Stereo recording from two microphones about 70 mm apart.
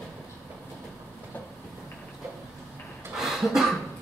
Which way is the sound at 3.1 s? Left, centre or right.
Centre.